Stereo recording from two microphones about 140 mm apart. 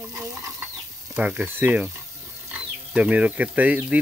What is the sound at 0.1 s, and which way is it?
Stir, 25° right (ahead or behind).